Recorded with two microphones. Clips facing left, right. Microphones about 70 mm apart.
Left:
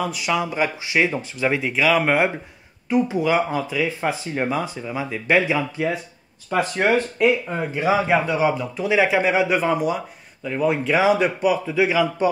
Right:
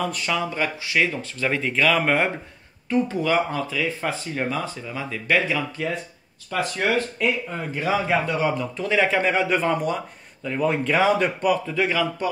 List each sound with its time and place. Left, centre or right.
0.0 s speech: centre